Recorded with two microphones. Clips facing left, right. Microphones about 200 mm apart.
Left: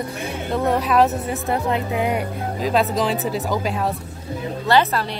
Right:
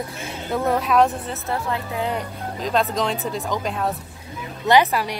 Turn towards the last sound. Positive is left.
turn(degrees=-15)  # may be behind; listen again after turning